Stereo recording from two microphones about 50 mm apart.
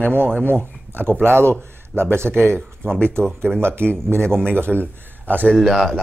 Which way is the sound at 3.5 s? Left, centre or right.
Centre.